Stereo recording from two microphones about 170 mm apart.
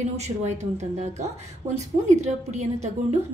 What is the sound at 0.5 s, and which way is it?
A woman's voice, 40° right (ahead or behind).